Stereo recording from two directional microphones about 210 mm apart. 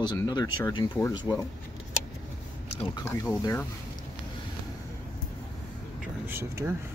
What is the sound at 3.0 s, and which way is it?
Speech, 15° left (ahead or behind).